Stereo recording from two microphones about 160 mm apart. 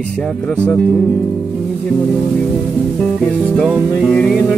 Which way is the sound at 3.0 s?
5° left (ahead or behind).